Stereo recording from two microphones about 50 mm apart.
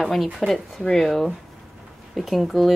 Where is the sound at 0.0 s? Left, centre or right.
Centre.